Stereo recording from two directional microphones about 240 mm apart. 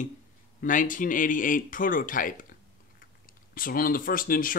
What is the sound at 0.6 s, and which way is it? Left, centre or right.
Speech, left.